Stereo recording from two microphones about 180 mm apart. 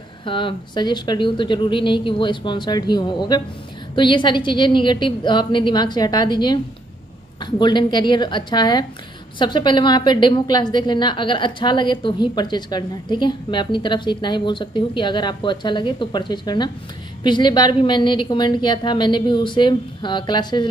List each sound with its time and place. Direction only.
0.2 s a woman's voice: 30° left (ahead or behind)